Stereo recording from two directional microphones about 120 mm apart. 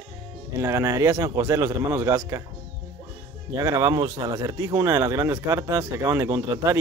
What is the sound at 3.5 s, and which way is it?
Speech, 25° right (ahead or behind).